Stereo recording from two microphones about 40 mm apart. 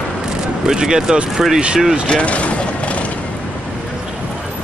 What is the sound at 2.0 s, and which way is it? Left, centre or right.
Mechanisms, left.